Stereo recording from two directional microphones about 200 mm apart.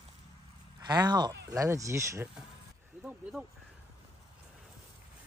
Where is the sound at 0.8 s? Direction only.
20° right (ahead or behind); by 3.4 s 5° right (ahead or behind).